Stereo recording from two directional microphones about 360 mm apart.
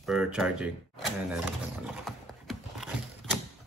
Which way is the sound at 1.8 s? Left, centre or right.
Centre.